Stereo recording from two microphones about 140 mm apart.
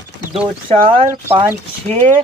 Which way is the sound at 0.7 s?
50° right (ahead or behind).